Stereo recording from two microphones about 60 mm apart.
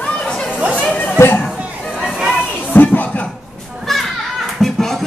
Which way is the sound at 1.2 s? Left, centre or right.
Left.